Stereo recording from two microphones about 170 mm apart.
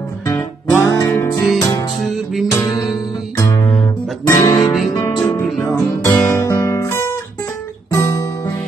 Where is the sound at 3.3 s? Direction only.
20° left (ahead or behind).